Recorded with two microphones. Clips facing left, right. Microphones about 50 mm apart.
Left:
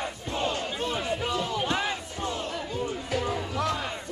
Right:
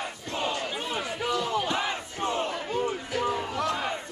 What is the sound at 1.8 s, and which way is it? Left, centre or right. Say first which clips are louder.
Battle cry: right 1 dB; right.